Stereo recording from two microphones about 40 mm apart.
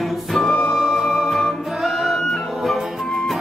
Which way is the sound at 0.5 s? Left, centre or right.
Centre.